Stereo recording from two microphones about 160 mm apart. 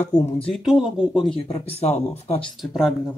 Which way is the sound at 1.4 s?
40° left (ahead or behind).